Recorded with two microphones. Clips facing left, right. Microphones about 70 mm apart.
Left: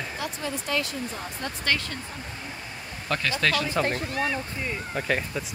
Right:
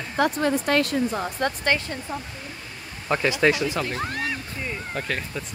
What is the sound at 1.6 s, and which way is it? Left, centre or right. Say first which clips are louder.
Speech: right 1 dB; right.